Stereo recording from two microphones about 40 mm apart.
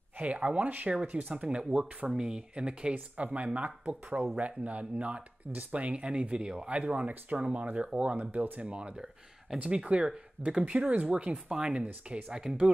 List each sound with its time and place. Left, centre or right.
0.2 s speech: right
10.0 s speech: centre
10.7 s speech: right
11.5 s speech: centre